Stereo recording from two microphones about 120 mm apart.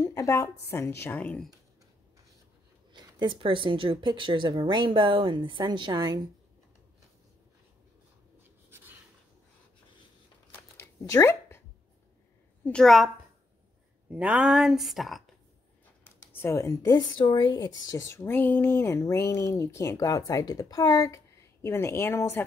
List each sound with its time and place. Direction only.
0.0 s speech: 25° left (ahead or behind)
2.9 s speech: 40° right (ahead or behind)
8.6 s writing: 20° right (ahead or behind)
10.8 s a sound: 25° left (ahead or behind)
12.6 s speech: 5° left (ahead or behind)
14.1 s speech: 10° right (ahead or behind)
16.0 s speech: 20° left (ahead or behind)